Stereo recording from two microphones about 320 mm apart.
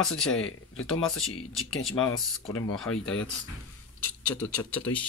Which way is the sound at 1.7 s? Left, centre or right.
Left.